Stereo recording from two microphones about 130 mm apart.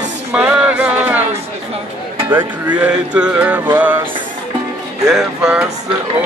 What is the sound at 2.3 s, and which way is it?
Music, 15° right (ahead or behind).